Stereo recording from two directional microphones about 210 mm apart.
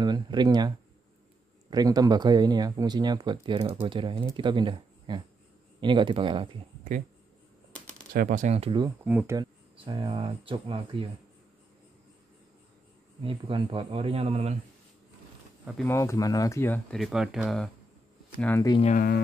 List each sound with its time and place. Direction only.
0.0 s speech: 20° right (ahead or behind)
8.1 s speech: 40° right (ahead or behind); by 8.9 s 25° right (ahead or behind)
9.0 s speech: 10° right (ahead or behind)
9.8 s speech: 25° right (ahead or behind)
13.2 s speech: 25° right (ahead or behind)
15.8 s speech: 15° left (ahead or behind)
18.4 s speech: 10° left (ahead or behind)
18.8 s speech: 30° left (ahead or behind)